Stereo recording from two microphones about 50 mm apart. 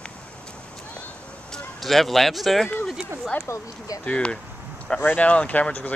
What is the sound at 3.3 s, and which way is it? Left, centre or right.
Speech, left.